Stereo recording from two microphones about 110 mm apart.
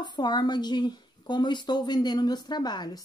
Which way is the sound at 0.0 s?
40° left (ahead or behind).